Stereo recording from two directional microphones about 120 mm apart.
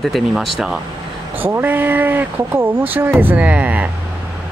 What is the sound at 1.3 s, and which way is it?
Speech, 15° right (ahead or behind).